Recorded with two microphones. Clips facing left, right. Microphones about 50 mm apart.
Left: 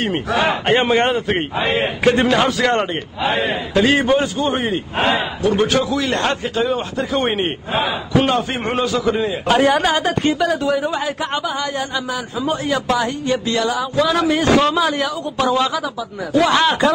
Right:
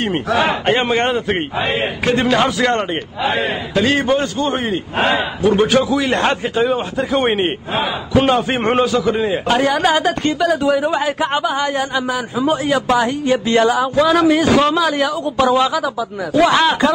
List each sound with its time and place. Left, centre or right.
0.4 s a man's voice: centre
3.8 s a man's voice: centre
5.1 s a man's voice: centre
7.7 s a man's voice: centre
10.9 s a man's voice: centre
13.5 s a sound: right
13.9 s a man's voice: centre